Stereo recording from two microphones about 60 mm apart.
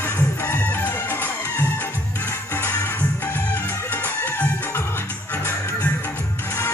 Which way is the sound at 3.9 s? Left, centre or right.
Left.